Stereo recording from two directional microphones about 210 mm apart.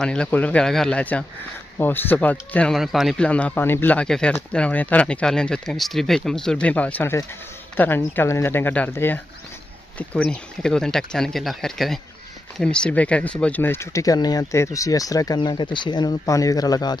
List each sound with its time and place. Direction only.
0.0 s speech: 5° left (ahead or behind)